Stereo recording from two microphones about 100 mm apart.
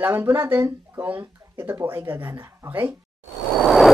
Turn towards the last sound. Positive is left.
turn(degrees=0)  # may be behind; listen again after turning